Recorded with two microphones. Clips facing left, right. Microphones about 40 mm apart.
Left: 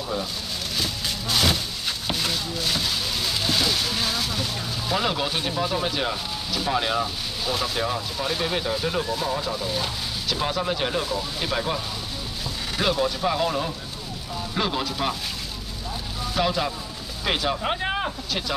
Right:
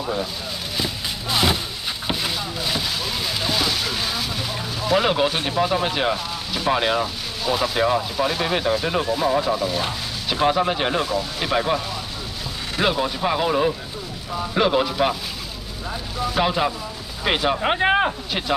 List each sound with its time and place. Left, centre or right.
0.7 s music: centre
2.0 s a sound: centre
5.0 s speech: right
7.4 s speech: centre
16.3 s speech: right